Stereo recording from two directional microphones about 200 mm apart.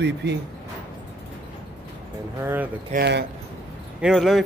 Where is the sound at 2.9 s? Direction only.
55° right (ahead or behind).